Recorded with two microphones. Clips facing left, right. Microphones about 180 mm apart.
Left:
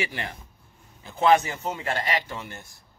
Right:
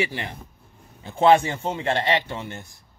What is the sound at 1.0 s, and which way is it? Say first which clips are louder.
A man's voice: right 3 dB; 30° right (ahead or behind).